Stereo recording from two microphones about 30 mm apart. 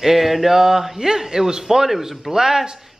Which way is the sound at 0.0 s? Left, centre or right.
Centre.